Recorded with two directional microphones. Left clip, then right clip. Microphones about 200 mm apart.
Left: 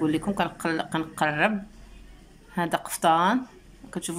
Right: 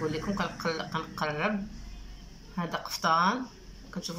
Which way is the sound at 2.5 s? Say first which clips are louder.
Left 7 dB; 45° left (ahead or behind).